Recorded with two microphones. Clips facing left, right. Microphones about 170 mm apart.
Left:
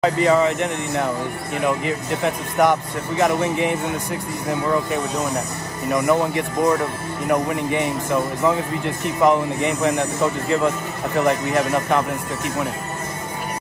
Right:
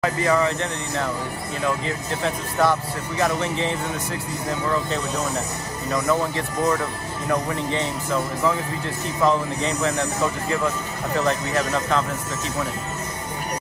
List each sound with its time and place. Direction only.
0.0 s a man's voice: 20° left (ahead or behind)
5.9 s a man's voice: 15° left (ahead or behind)